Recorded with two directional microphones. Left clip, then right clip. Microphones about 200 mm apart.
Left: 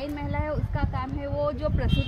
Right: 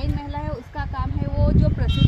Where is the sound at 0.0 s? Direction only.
10° left (ahead or behind).